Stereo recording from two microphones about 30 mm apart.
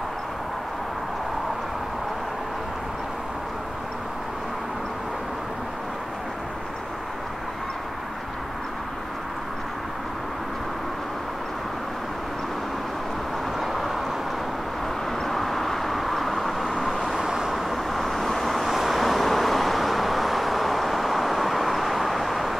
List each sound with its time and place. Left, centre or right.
13.6 s vehicle: centre
15.2 s vehicle: centre
17.2 s vehicle: centre
17.6 s vehicle: centre